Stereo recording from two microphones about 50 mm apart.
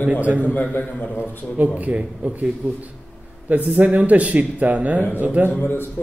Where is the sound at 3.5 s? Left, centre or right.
Right.